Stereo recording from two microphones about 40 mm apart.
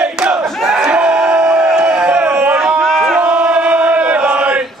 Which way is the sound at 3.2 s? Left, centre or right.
Right.